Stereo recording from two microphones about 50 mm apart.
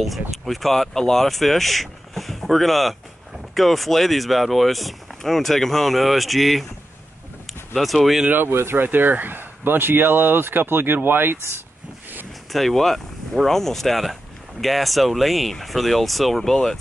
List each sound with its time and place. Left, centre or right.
0.0 s speech: centre
7.7 s speech: centre
8.5 s speech: right
8.8 s speech: right
12.5 s speech: centre